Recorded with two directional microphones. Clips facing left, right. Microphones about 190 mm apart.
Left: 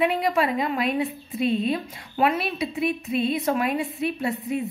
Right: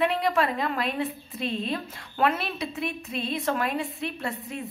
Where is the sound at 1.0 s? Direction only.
Centre (ahead or behind).